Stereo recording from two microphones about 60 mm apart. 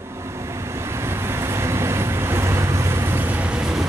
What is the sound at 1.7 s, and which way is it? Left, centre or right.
Vehicle, right.